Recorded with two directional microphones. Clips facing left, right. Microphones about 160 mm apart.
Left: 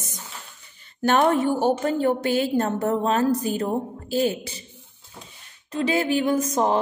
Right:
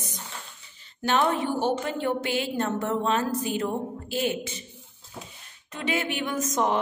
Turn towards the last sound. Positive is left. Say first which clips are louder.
# left 4 dB
turn(degrees=35)  # may be behind; listen again after turning